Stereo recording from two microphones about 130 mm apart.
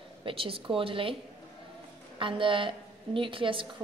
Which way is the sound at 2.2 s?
40° right (ahead or behind).